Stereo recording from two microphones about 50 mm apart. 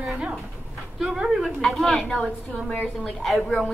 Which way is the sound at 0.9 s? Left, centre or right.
Centre.